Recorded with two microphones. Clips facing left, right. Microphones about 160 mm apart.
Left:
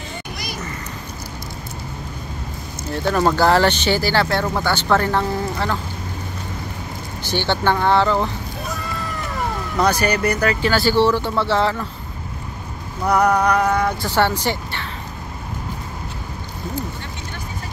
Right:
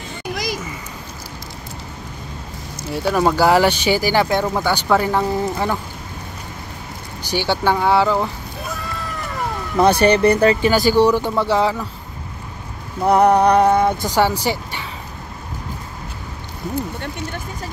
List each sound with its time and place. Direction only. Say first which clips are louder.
0.3 s a sound: right 11 dB; 90° right
2.9 s speech: right 1 dB; 5° right (ahead or behind)
7.2 s speech: right 1 dB; 10° right (ahead or behind)
8.7 s cat: left 1 dB; centre (ahead or behind)
9.8 s speech: right 5 dB; 25° right (ahead or behind); by 11.8 s 10° right (ahead or behind)
13.0 s music: right 4 dB; 30° right (ahead or behind)
14.1 s speech: right 1 dB; 10° right (ahead or behind)